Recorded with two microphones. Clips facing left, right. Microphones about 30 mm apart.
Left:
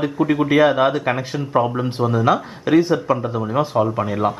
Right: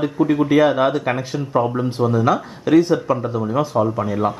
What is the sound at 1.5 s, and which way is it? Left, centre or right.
Speech, left.